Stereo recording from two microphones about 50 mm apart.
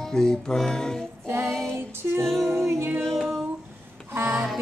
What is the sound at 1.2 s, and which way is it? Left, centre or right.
Music, right.